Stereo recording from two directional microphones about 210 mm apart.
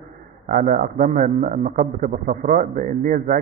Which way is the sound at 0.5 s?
40° right (ahead or behind).